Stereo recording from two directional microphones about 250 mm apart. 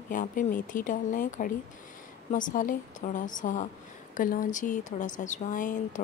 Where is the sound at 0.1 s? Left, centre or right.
Left.